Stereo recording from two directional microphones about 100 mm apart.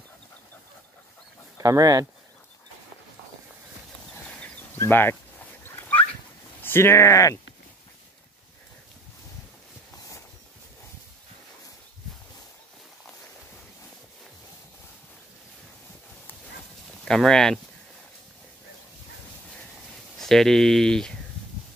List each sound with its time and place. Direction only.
1.6 s speech: 35° right (ahead or behind)
4.7 s dog: 20° left (ahead or behind)
6.6 s speech: 25° left (ahead or behind)
17.0 s speech: 5° left (ahead or behind)
20.2 s speech: 5° left (ahead or behind)